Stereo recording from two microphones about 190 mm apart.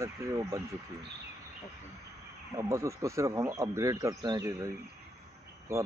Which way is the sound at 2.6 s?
15° right (ahead or behind).